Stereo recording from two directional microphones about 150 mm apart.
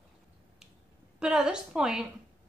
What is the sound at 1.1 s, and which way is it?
Speech, 5° right (ahead or behind).